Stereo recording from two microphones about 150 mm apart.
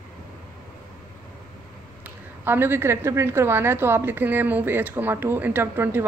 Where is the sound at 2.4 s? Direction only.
15° right (ahead or behind).